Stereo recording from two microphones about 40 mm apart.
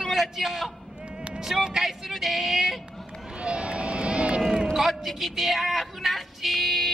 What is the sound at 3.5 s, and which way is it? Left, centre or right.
Vehicle, right.